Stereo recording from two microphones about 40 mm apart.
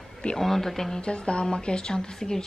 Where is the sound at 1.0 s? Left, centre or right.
Left.